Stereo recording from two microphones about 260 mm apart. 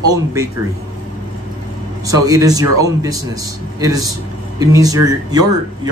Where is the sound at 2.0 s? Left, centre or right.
Centre.